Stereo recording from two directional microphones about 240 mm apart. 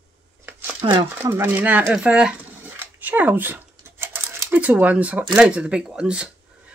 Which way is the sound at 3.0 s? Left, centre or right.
Centre.